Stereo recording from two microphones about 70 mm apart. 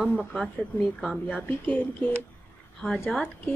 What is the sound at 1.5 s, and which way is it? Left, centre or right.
Speech, left.